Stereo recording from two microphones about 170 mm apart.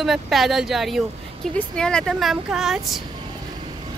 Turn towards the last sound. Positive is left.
turn(degrees=-30)  # may be behind; listen again after turning